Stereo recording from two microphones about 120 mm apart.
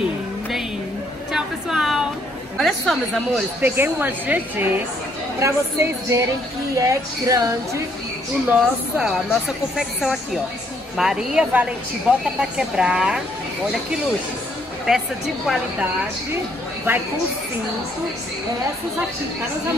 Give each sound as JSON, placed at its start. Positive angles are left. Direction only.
{"t": 1.3, "sound": "a sound", "side_deg": -5}
{"t": 2.5, "sound": "a woman's voice", "side_deg": 5}
{"t": 3.6, "sound": "a woman's voice", "side_deg": -15}
{"t": 8.5, "sound": "a woman's voice", "side_deg": -5}
{"t": 14.9, "sound": "a woman's voice", "side_deg": -5}